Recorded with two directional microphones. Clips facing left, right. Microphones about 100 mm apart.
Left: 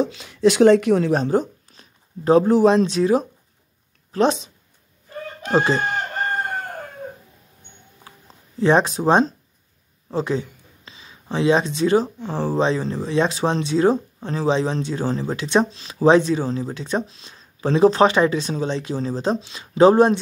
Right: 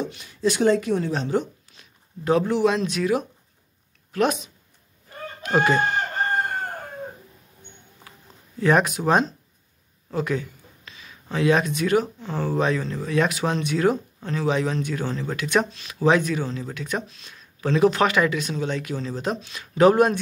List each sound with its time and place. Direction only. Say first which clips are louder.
0.0 s speech: left 7 dB; 90° left
1.1 s speech: left 5 dB; 40° left (ahead or behind)
8.5 s speech: left 3 dB; 25° left (ahead or behind)